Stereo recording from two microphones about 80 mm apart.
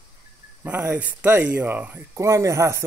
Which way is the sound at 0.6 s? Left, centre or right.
Right.